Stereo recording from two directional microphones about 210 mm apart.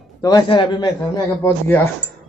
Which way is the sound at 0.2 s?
15° left (ahead or behind).